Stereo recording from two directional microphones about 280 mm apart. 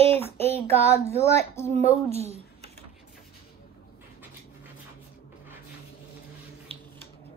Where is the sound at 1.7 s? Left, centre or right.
Right.